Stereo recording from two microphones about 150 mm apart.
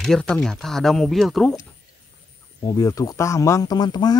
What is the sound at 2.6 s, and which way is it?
Speech, 20° left (ahead or behind).